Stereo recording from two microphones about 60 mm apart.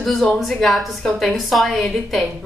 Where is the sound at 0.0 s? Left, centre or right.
Centre.